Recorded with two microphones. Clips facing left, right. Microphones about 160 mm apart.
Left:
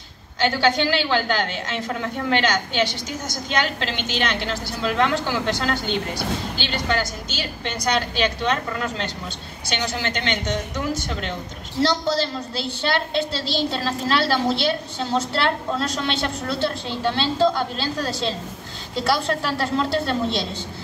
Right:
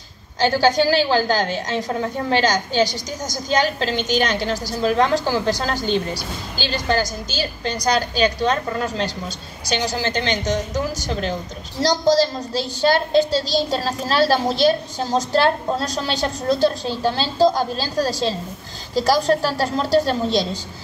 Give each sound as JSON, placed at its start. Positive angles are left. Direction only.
{"t": 0.4, "sound": "a woman's voice", "side_deg": -40}